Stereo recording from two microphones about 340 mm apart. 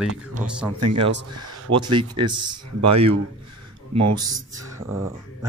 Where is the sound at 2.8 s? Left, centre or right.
Right.